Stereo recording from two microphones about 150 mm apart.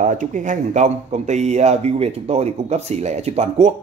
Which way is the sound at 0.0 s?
60° right (ahead or behind).